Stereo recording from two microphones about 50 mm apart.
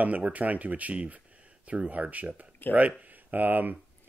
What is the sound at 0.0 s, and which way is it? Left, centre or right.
Speech, right.